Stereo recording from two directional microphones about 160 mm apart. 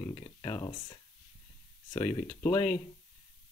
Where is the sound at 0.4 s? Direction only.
35° left (ahead or behind).